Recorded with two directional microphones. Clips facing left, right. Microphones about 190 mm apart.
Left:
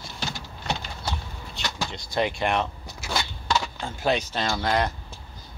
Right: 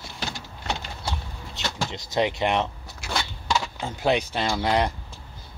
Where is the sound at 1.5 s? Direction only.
20° right (ahead or behind).